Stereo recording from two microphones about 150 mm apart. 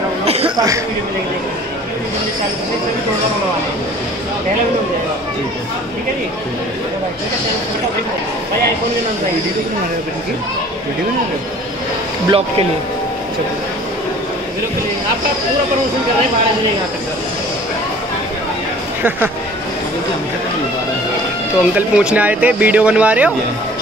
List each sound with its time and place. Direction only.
0.2 s a sound: 40° right (ahead or behind)
12.3 s speech: 40° right (ahead or behind)
19.0 s speech: 10° right (ahead or behind)
21.7 s speech: 10° right (ahead or behind)